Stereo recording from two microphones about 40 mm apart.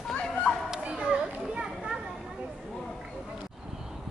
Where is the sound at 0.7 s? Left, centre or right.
Right.